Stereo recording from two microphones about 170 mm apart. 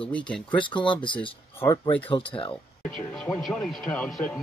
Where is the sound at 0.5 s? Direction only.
30° left (ahead or behind).